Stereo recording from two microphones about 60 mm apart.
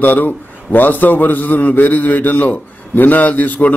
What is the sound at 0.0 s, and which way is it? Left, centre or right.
A man's voice, left.